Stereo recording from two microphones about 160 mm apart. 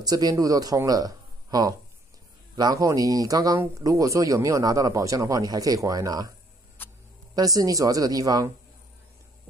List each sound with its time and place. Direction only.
0.0 s speech: 25° right (ahead or behind)
6.8 s a sound: 15° left (ahead or behind)
7.3 s speech: 20° right (ahead or behind)